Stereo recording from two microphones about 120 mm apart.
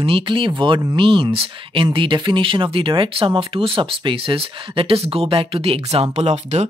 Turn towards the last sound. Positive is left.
turn(degrees=-65)  # may be behind; listen again after turning